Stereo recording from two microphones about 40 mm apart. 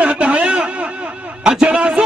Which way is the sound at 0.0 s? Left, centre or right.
Right.